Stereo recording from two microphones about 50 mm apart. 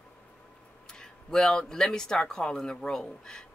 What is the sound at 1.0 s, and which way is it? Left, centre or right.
Speech, centre.